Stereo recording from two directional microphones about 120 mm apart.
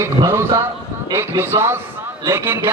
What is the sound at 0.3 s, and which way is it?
A man's voice, 20° right (ahead or behind).